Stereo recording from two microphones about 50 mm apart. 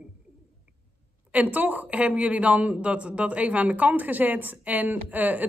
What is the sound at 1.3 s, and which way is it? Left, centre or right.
Speech, right.